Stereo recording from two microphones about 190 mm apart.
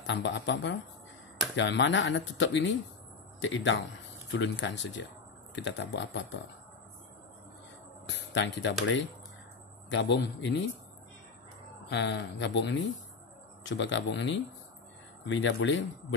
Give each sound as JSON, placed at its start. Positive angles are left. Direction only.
{"t": 0.0, "sound": "speech", "side_deg": 65}
{"t": 8.1, "sound": "speech", "side_deg": 70}
{"t": 11.9, "sound": "speech", "side_deg": 65}